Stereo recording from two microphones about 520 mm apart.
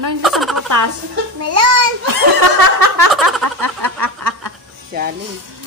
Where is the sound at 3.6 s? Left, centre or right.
Right.